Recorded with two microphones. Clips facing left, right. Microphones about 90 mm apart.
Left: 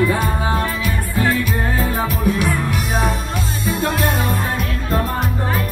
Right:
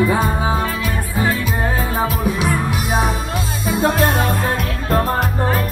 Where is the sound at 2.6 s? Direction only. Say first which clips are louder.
Right 1 dB; 15° right (ahead or behind).